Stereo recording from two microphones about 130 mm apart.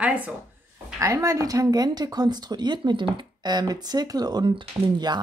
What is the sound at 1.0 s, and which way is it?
Speech, 25° right (ahead or behind).